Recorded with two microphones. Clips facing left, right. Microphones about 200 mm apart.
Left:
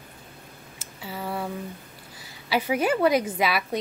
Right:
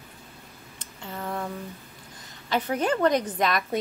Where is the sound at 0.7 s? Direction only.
5° left (ahead or behind).